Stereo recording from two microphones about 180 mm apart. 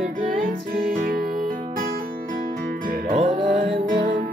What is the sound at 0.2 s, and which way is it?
Music, 50° right (ahead or behind).